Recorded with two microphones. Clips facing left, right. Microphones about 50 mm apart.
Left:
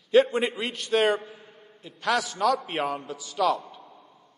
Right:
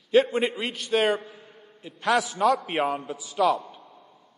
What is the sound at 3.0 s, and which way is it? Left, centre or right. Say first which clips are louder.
Speech: right 2 dB; centre.